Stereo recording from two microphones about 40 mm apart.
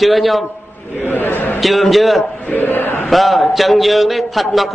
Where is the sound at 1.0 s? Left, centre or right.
Left.